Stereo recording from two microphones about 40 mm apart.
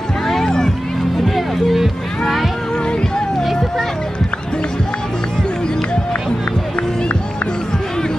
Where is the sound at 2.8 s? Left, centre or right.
Left.